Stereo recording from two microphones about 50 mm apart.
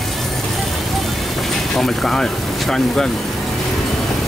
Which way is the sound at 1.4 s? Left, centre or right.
Centre.